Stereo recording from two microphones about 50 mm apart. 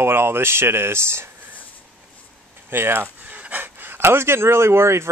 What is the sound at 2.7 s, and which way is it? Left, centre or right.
Speech, right.